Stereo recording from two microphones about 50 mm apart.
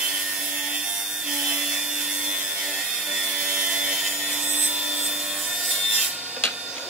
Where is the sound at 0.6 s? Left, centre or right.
Centre.